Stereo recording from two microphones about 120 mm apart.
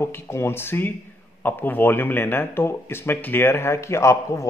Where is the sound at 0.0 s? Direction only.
20° left (ahead or behind).